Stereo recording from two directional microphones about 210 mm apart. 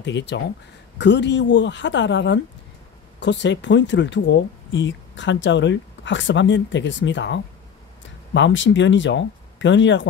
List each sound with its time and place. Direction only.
0.0 s speech: 55° left (ahead or behind)